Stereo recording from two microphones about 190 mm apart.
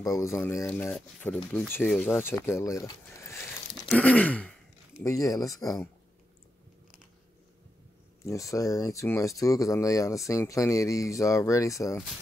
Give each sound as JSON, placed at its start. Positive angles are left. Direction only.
{"t": 0.0, "sound": "speech", "side_deg": 15}
{"t": 8.2, "sound": "speech", "side_deg": 15}